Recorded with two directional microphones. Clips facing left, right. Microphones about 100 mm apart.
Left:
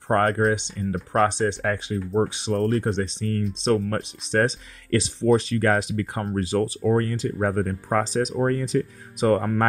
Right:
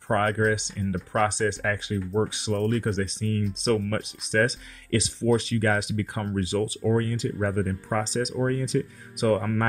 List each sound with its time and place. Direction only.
0.1 s speech: 40° left (ahead or behind)
9.1 s speech: 35° left (ahead or behind)